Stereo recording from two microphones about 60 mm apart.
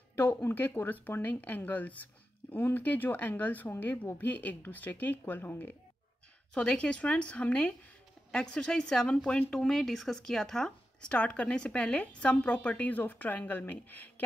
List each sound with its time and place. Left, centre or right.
0.1 s speech: left
6.5 s a woman's voice: centre